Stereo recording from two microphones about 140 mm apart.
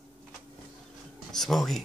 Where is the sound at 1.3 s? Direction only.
Centre (ahead or behind).